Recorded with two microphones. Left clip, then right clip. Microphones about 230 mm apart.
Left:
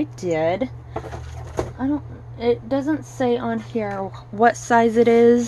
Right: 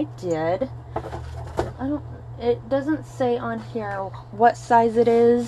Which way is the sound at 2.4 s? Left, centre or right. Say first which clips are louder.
Left 2 dB; left.